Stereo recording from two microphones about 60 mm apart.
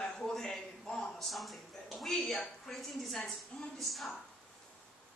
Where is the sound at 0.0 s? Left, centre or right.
Centre.